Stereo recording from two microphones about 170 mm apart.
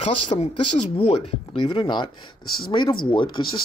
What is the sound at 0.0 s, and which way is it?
Speech, 40° left (ahead or behind).